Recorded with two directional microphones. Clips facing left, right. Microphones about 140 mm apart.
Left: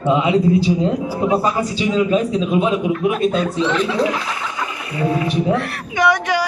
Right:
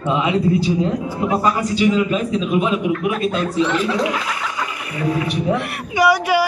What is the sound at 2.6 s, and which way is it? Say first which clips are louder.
Speech: left 2 dB; 25° left (ahead or behind).